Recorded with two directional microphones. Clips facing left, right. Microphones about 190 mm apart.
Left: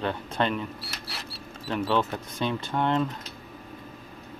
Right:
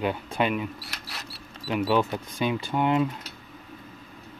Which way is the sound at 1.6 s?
10° right (ahead or behind).